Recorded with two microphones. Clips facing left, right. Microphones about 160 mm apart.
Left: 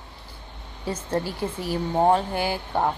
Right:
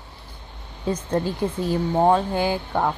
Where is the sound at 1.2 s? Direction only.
20° right (ahead or behind).